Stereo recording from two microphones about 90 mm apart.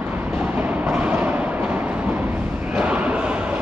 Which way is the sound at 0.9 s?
15° right (ahead or behind).